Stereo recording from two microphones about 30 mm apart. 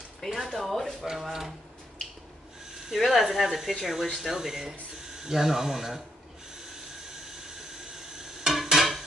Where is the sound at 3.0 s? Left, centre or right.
Centre.